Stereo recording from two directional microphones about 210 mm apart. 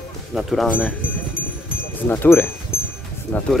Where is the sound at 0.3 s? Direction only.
Centre (ahead or behind).